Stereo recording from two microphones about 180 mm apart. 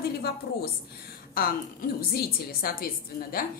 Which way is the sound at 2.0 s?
55° left (ahead or behind).